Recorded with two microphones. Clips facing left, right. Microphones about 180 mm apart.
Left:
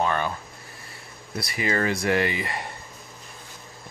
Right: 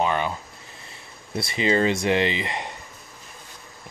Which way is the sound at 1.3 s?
25° right (ahead or behind).